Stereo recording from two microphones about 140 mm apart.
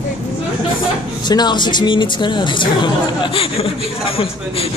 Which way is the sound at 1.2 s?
30° left (ahead or behind).